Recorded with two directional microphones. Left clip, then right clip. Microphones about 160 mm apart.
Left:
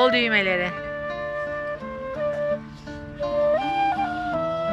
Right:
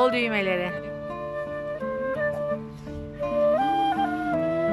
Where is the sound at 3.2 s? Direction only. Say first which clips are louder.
Left 1 dB; 20° right (ahead or behind).